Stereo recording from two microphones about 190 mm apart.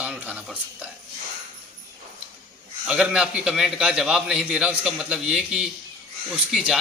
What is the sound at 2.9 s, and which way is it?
A man's voice, 5° right (ahead or behind).